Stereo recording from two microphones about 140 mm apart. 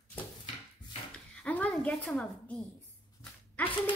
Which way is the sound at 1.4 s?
10° left (ahead or behind).